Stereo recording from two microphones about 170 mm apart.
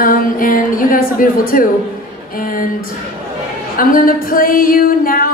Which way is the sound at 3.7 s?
55° left (ahead or behind).